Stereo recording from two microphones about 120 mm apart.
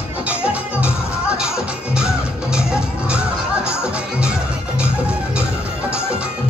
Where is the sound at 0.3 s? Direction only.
10° right (ahead or behind).